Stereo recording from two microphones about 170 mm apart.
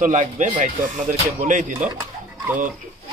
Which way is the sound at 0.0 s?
45° right (ahead or behind).